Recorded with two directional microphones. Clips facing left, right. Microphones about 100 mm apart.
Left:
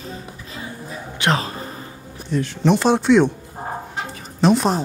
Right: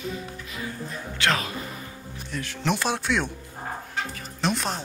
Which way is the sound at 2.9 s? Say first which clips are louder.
Left 11 dB; centre (ahead or behind).